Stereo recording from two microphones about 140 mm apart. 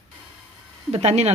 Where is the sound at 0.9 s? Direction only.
50° right (ahead or behind).